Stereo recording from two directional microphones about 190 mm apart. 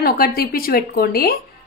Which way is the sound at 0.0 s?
50° left (ahead or behind).